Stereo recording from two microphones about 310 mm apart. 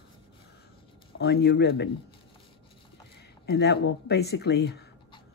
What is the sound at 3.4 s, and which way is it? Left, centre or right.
Speech, left.